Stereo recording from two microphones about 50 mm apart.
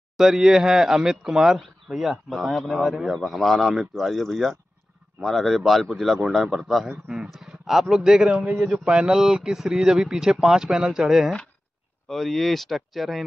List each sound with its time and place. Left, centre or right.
0.2 s speech: centre
6.9 s speech: centre
7.2 s speech: centre
8.3 s a man's voice: right; by 11.3 s centre
12.1 s speech: centre